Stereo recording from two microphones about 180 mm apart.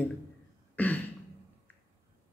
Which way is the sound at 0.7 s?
10° left (ahead or behind).